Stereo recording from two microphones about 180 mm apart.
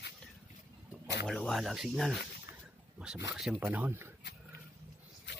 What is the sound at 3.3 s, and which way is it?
Speech, 5° right (ahead or behind).